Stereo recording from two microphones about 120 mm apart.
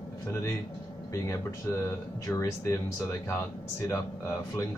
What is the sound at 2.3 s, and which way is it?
Speech, 25° left (ahead or behind).